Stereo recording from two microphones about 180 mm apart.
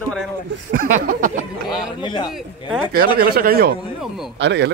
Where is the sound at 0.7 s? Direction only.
50° right (ahead or behind).